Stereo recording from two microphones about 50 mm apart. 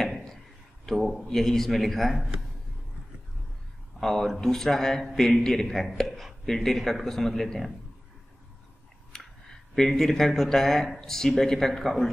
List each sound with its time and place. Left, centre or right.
0.8 s a man's voice: centre
4.0 s a man's voice: centre
6.4 s speech: centre
9.1 s speech: centre